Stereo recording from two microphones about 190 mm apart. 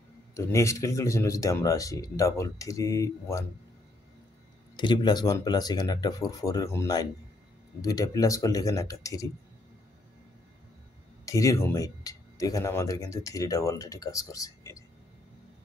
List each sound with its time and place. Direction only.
0.3 s speech: 15° left (ahead or behind)
4.7 s speech: 25° left (ahead or behind)
11.2 s speech: 15° left (ahead or behind)